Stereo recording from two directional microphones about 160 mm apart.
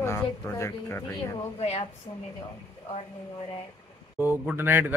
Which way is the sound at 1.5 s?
40° left (ahead or behind).